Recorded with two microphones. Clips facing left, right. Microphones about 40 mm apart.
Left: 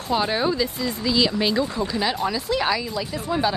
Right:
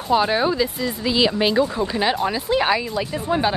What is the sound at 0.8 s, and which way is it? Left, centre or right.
Speech, right.